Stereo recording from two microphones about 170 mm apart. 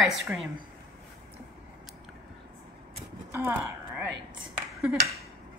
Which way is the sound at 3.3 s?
15° right (ahead or behind).